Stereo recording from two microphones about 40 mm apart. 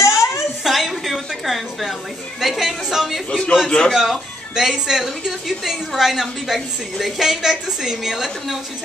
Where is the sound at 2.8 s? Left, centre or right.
Centre.